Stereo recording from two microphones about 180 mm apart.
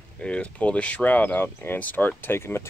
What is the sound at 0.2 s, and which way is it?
Speech, 5° left (ahead or behind).